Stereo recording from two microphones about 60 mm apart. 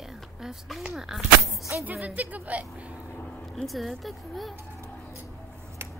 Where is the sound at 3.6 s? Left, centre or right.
Centre.